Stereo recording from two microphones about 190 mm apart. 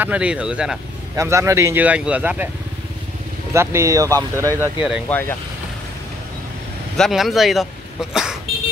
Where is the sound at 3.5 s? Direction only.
15° right (ahead or behind).